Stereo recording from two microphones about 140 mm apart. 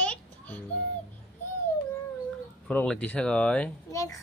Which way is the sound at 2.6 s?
5° left (ahead or behind).